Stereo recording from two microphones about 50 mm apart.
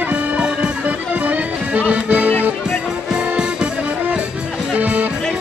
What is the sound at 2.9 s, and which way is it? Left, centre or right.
Music, centre.